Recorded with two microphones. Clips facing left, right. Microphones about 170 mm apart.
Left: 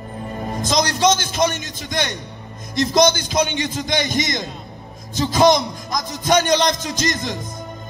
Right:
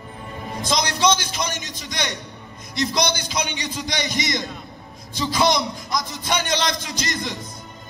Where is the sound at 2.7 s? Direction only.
45° left (ahead or behind).